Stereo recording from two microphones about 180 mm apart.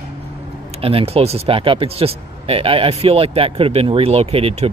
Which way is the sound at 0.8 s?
30° right (ahead or behind).